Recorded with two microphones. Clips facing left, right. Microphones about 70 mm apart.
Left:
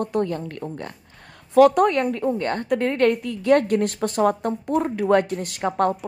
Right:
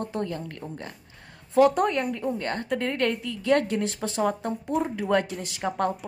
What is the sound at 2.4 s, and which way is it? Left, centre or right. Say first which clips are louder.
A woman's voice: left 5 dB; left.